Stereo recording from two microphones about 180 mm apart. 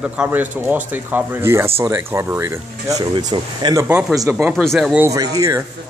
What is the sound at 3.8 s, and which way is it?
A man's voice, 10° right (ahead or behind).